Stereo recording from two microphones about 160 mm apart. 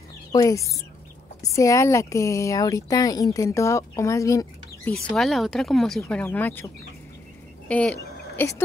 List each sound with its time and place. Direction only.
0.3 s speech: 20° left (ahead or behind)
5.1 s speech: centre (ahead or behind)